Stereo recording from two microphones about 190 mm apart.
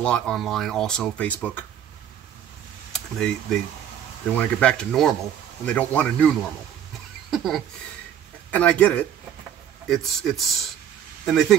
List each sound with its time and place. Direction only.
0.0 s speech: 5° left (ahead or behind)
2.9 s speech: 5° left (ahead or behind)